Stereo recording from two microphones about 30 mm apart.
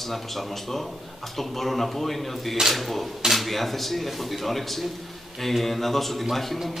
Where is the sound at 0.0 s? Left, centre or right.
Centre.